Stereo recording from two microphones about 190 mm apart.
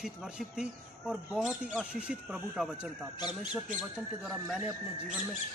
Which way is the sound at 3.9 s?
5° right (ahead or behind).